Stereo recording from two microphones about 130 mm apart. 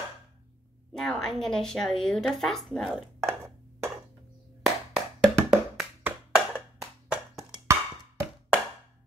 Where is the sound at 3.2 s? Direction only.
20° right (ahead or behind).